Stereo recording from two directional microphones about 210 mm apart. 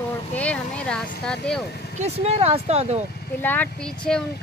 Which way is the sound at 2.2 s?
30° right (ahead or behind).